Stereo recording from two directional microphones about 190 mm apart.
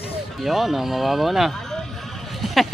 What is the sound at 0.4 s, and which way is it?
Speech, centre (ahead or behind).